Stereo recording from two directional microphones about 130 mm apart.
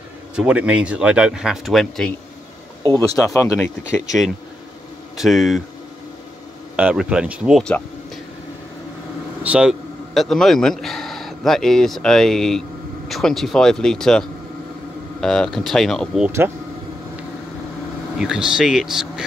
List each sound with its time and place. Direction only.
0.4 s speech: 10° right (ahead or behind)
3.3 s speech: 20° left (ahead or behind)
3.8 s speech: 5° right (ahead or behind)
6.8 s speech: 10° right (ahead or behind)
9.4 s a man's voice: 10° right (ahead or behind)
16.3 s speech: 20° right (ahead or behind)
18.1 s speech: 5° right (ahead or behind)